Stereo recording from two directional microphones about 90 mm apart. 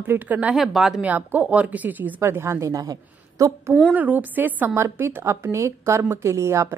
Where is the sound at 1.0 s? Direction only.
15° right (ahead or behind); by 3.7 s 40° right (ahead or behind).